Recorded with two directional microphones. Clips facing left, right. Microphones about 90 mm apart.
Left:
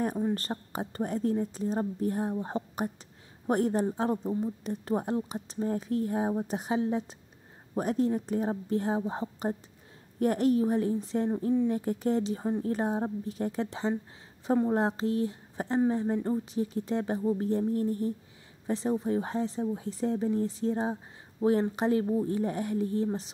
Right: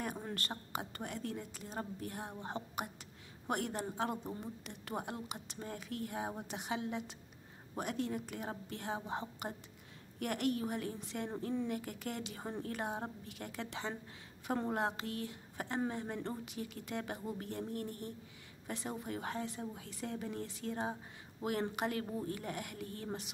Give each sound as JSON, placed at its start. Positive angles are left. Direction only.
{"t": 0.3, "sound": "speech", "side_deg": 35}